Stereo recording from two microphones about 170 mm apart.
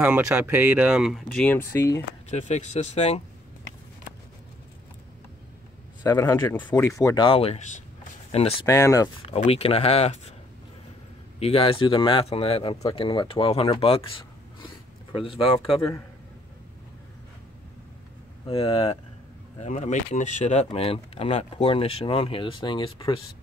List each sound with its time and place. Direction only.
0.0 s speech: 10° right (ahead or behind); by 2.0 s 15° left (ahead or behind)
2.3 s speech: 45° left (ahead or behind)
6.0 s speech: 20° left (ahead or behind)
7.2 s speech: 35° left (ahead or behind)
8.6 s speech: 20° left (ahead or behind)
9.3 s speech: 35° left (ahead or behind)
11.3 s speech: 35° left (ahead or behind)
18.5 s speech: 35° left (ahead or behind)